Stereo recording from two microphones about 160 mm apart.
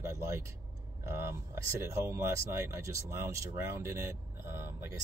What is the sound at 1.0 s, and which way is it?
Speech, 15° right (ahead or behind).